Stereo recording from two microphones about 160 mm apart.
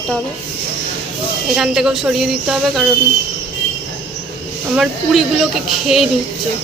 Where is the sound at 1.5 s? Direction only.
5° right (ahead or behind).